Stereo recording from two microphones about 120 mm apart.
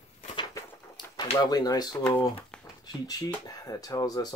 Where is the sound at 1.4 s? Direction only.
35° left (ahead or behind).